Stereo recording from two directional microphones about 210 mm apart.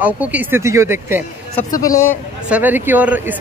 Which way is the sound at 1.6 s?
15° left (ahead or behind).